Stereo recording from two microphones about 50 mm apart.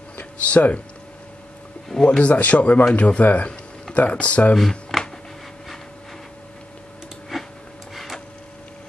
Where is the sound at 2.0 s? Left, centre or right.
Left.